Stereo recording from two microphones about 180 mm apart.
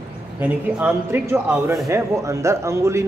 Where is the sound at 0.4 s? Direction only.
10° right (ahead or behind).